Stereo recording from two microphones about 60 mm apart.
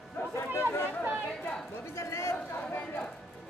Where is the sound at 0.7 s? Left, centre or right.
Left.